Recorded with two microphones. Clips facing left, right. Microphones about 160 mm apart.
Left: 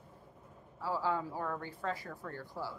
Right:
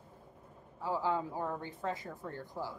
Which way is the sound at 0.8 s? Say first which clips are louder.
Right 1 dB; 15° right (ahead or behind).